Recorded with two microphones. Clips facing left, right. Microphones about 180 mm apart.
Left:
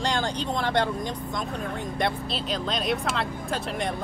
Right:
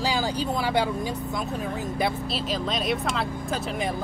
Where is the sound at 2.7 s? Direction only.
Centre (ahead or behind).